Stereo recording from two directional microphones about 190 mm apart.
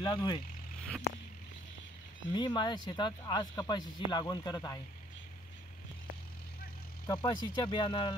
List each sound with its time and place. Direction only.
0.0 s speech: 25° left (ahead or behind)
2.3 s speech: 25° left (ahead or behind)
7.1 s speech: 25° left (ahead or behind)